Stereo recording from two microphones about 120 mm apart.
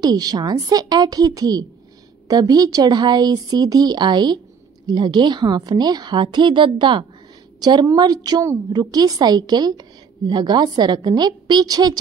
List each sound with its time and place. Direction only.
0.0 s a woman's voice: 35° right (ahead or behind)